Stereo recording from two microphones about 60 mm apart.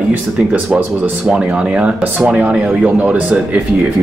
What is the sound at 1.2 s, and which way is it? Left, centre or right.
Speech, centre.